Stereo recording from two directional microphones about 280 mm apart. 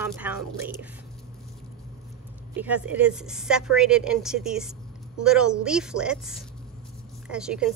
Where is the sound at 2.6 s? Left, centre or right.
Centre.